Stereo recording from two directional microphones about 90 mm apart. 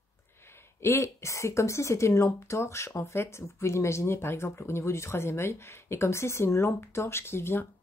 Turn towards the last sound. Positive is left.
turn(degrees=25)  # may be behind; listen again after turning